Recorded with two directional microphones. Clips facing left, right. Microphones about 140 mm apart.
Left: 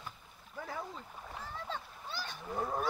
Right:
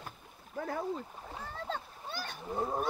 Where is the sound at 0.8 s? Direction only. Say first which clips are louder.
Right 7 dB; 30° right (ahead or behind).